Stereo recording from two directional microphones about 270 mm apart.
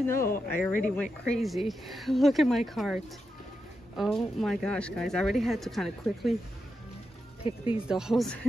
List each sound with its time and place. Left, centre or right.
0.0 s speech: centre
7.4 s speech: centre
7.9 s speech: centre